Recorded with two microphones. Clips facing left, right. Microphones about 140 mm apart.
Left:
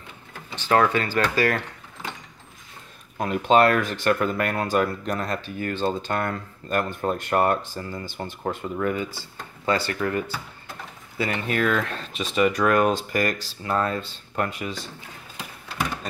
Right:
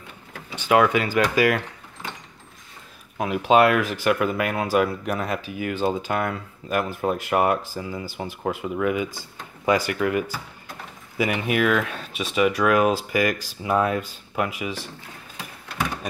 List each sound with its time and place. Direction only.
0.6 s speech: 10° right (ahead or behind)
3.2 s speech: 5° right (ahead or behind)